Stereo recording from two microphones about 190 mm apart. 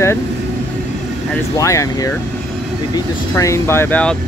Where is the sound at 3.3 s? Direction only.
15° left (ahead or behind).